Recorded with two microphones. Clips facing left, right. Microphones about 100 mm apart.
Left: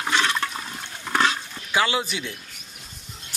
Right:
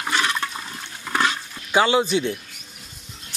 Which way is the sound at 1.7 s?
25° right (ahead or behind).